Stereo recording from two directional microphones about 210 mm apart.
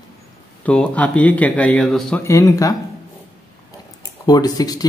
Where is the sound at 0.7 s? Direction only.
5° left (ahead or behind).